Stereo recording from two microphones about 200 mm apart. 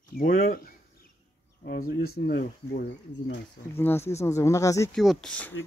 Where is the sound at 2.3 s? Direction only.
50° left (ahead or behind).